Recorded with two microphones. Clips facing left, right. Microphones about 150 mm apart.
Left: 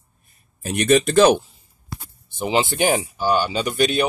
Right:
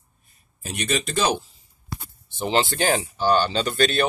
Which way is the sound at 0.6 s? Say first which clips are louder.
Left 9 dB; 55° left (ahead or behind).